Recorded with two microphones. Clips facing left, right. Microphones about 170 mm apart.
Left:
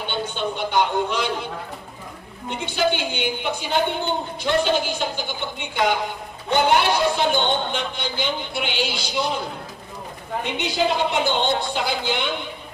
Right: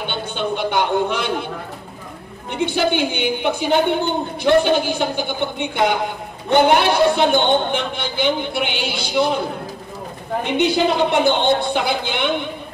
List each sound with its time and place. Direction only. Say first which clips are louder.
0.0 s a sound: right 2 dB; 60° right (ahead or behind)
2.5 s speech: right 4 dB; 60° right (ahead or behind)
10.4 s speech: right 6 dB; 55° right (ahead or behind)